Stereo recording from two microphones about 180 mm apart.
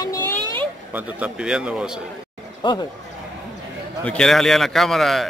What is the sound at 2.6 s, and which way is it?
Speech, 25° left (ahead or behind).